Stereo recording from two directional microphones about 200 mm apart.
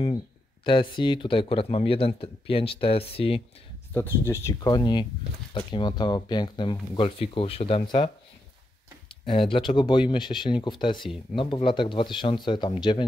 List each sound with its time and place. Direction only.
0.7 s speech: 25° left (ahead or behind)
3.9 s speech: 10° left (ahead or behind)
9.5 s speech: 25° left (ahead or behind)